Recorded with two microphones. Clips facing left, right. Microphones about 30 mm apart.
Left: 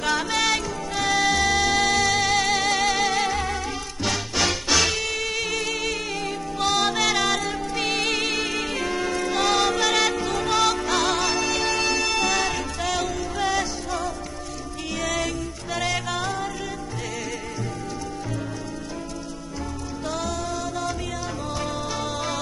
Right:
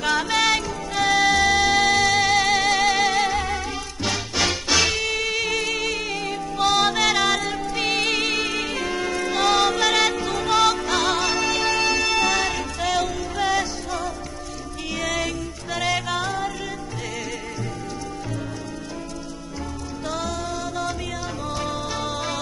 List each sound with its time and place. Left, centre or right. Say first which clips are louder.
0.0 s music: right 2 dB; centre
20.1 s music: right 1 dB; centre